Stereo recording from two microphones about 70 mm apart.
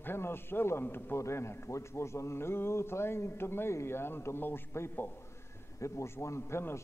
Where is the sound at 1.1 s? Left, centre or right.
Left.